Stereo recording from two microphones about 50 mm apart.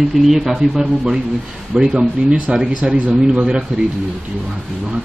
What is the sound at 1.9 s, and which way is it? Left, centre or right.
Speech, right.